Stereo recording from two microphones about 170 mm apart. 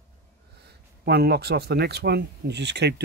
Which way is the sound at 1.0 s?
70° right (ahead or behind).